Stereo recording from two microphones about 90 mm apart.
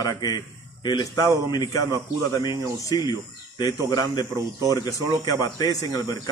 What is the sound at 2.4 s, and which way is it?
Speech, 55° left (ahead or behind).